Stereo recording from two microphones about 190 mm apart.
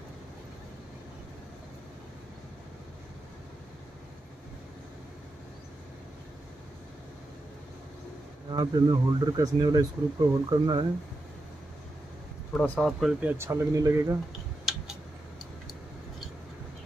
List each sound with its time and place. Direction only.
8.5 s speech: 25° right (ahead or behind)
12.5 s speech: 5° left (ahead or behind); by 14.1 s 15° right (ahead or behind)